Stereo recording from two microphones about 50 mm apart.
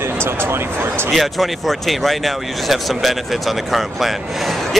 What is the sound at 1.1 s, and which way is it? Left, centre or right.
Speech, centre.